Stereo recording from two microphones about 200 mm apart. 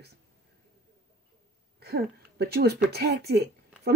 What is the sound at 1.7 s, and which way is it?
Speech, 50° right (ahead or behind).